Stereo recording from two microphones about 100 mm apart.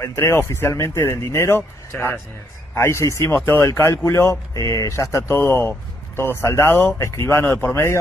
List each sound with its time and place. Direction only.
0.0 s speech: 30° left (ahead or behind)
5.4 s speech: 20° left (ahead or behind)